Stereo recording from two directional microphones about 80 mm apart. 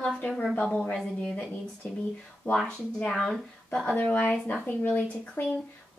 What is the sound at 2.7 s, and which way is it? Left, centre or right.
A woman's voice, centre.